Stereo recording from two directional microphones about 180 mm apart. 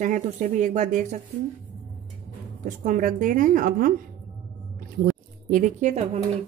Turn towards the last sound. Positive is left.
turn(degrees=-40)  # may be behind; listen again after turning